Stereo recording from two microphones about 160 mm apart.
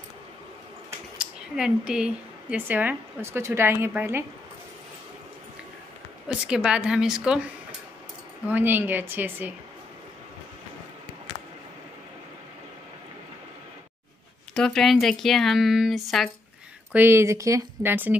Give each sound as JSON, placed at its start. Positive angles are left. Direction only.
{"t": 1.1, "sound": "speech", "side_deg": -5}
{"t": 6.2, "sound": "speech", "side_deg": -5}
{"t": 8.5, "sound": "speech", "side_deg": -10}
{"t": 14.5, "sound": "speech", "side_deg": 0}
{"t": 16.9, "sound": "speech", "side_deg": -15}